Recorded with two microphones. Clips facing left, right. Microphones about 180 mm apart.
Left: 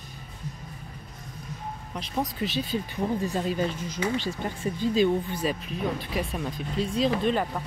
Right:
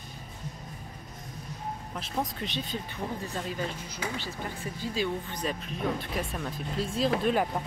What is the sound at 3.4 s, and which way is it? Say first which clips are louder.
Speech: left 6 dB; 20° left (ahead or behind).